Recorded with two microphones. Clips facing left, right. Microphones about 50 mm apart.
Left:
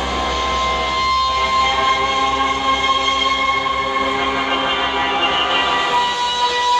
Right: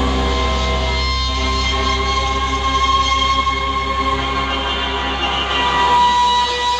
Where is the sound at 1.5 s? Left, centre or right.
Left.